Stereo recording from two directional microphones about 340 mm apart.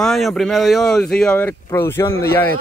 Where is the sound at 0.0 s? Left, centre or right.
Centre.